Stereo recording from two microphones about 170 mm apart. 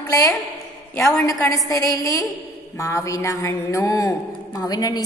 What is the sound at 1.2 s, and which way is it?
A woman's voice, 20° left (ahead or behind).